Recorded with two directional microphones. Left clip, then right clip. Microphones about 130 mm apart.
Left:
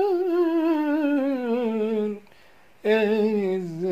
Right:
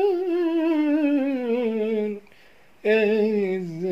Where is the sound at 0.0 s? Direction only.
20° right (ahead or behind).